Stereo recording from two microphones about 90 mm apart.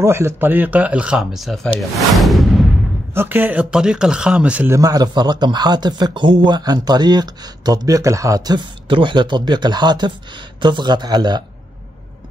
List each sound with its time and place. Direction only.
0.0 s speech: 30° right (ahead or behind); by 2.6 s centre (ahead or behind)
3.2 s speech: 20° right (ahead or behind)
3.7 s speech: 10° right (ahead or behind)
4.6 s speech: 40° right (ahead or behind)
8.8 s speech: 70° right (ahead or behind); by 11.4 s 50° right (ahead or behind)